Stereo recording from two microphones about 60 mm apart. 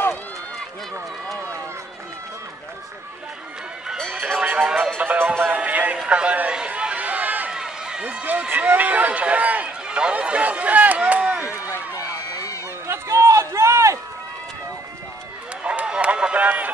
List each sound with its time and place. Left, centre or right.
4.4 s music: centre
4.9 s music: right
6.0 s run: centre
7.5 s run: centre
8.0 s speech: right
12.1 s run: left
12.8 s run: right
15.6 s run: right